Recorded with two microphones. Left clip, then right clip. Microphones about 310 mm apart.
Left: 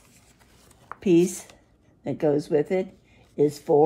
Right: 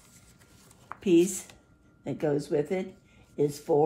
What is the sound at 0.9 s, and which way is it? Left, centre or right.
Speech, left.